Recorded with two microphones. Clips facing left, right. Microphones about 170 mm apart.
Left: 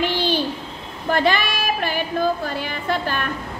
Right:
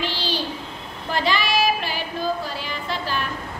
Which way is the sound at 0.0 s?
55° left (ahead or behind).